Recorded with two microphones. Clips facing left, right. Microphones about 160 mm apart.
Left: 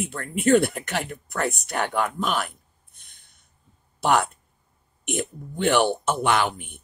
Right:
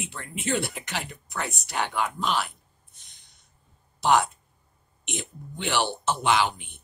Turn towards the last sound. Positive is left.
turn(degrees=50)  # may be behind; listen again after turning